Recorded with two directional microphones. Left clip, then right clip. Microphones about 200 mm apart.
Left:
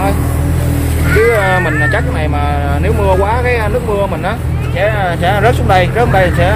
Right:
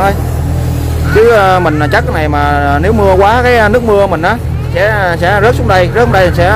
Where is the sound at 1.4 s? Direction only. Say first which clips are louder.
Right 4 dB; 30° right (ahead or behind).